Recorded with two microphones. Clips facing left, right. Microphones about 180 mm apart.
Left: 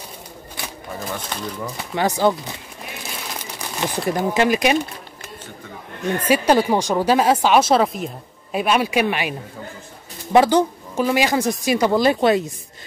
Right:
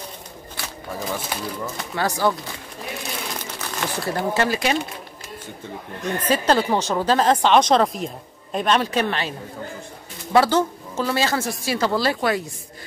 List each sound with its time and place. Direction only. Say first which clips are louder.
0.6 s a sound: left 2 dB; 20° left (ahead or behind)
0.9 s speech: right 1 dB; 5° right (ahead or behind)
2.0 s speech: left 3 dB; 20° left (ahead or behind)
3.5 s a sound: left 4 dB; 15° left (ahead or behind)
4.3 s a woman's voice: left 4 dB; 15° left (ahead or behind)
6.1 s a woman's voice: left 3 dB; 10° left (ahead or behind)
10.3 s a woman's voice: left 3 dB; 15° left (ahead or behind)